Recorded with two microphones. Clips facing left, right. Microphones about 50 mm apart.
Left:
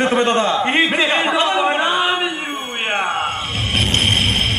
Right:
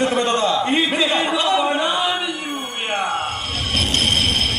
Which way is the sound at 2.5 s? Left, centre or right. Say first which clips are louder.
Left 2 dB; left.